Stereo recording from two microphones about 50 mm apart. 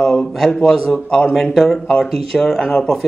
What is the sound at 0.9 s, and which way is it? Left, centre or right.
Speech, centre.